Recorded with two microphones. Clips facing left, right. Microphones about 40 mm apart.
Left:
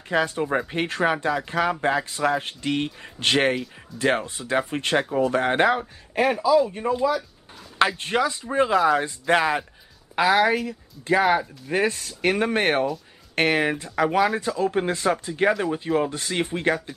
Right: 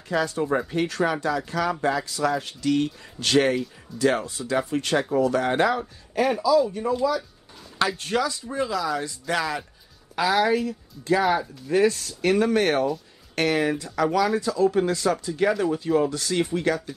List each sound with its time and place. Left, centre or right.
0.1 s speech: left
3.9 s speech: centre
4.3 s speech: left
10.1 s speech: left